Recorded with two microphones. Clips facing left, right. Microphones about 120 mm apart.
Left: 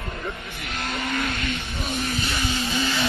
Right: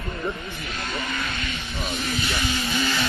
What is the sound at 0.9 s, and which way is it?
Vehicle, 60° left (ahead or behind).